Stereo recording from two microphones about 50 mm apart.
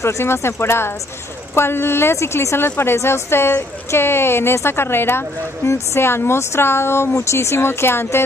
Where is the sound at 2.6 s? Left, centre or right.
Left.